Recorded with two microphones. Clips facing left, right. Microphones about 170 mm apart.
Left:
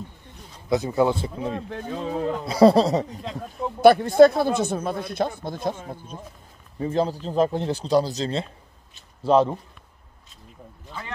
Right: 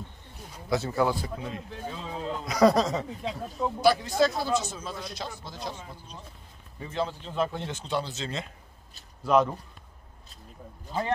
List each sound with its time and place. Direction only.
0.7 s speech: 20° left (ahead or behind)
1.7 s speech: 55° left (ahead or behind)
2.4 s speech: 30° left (ahead or behind)
3.8 s speech: 55° left (ahead or behind)
6.8 s speech: 40° left (ahead or behind)
10.9 s speech: 35° right (ahead or behind)